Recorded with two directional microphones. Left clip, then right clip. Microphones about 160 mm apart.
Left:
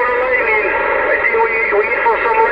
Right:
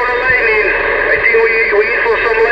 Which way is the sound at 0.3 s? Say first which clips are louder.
Right 3 dB; 35° right (ahead or behind).